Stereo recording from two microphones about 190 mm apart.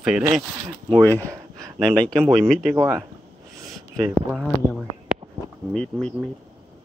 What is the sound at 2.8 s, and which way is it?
Speech, 10° right (ahead or behind).